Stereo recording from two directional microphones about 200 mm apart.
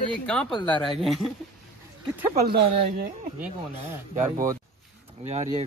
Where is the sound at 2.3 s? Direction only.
50° right (ahead or behind).